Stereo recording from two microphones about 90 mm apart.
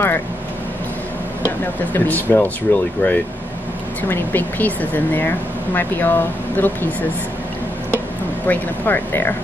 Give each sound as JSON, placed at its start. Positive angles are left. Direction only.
{"t": 2.0, "sound": "speech", "side_deg": 20}
{"t": 8.5, "sound": "speech", "side_deg": 20}